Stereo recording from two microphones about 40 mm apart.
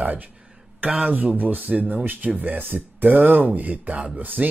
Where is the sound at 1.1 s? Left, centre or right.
Right.